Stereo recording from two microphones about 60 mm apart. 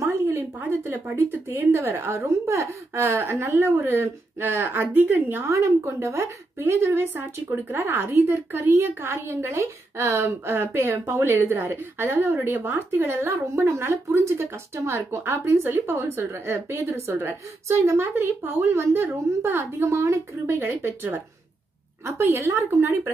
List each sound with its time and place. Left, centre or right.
0.7 s a woman's voice: right
1.9 s a woman's voice: right
3.0 s a woman's voice: right
5.5 s a woman's voice: right
16.2 s a woman's voice: right
22.4 s a woman's voice: right